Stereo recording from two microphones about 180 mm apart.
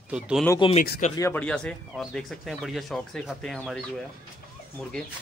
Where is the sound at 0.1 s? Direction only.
5° right (ahead or behind).